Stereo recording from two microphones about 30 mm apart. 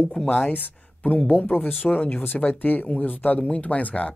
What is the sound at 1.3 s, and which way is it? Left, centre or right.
Speech, left.